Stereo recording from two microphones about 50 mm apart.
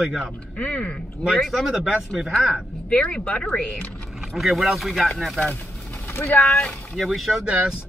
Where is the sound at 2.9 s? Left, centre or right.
Left.